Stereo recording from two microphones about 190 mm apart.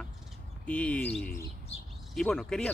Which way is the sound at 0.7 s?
5° left (ahead or behind).